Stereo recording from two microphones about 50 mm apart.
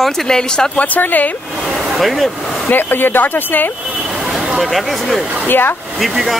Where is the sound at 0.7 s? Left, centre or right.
Left.